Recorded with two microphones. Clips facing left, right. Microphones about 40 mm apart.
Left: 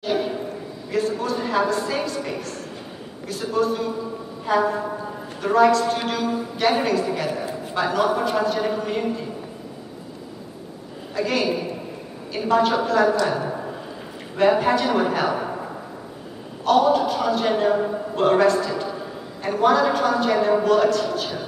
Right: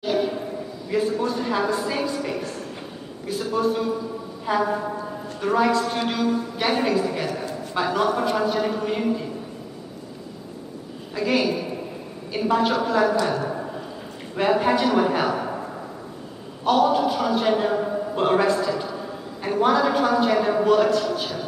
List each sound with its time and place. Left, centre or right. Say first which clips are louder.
0.1 s a sound: even; centre
0.9 s a woman's voice: even; centre
3.4 s a man's voice: left 1 dB; centre
11.1 s a man's voice: even; centre
13.3 s a sound: even; centre
14.6 s a woman's voice: even; centre
16.6 s a man's voice: left 1 dB; centre